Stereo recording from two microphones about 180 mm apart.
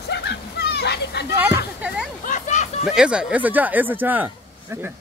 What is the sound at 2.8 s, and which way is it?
Speech, 5° right (ahead or behind).